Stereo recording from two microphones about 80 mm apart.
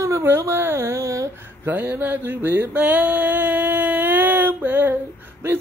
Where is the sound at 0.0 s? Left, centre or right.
Right.